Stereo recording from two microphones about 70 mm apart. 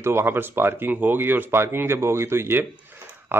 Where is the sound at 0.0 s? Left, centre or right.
Right.